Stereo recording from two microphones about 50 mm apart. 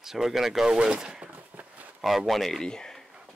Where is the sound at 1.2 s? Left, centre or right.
Right.